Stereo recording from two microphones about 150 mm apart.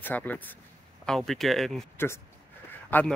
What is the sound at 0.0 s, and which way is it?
Speech, 10° left (ahead or behind).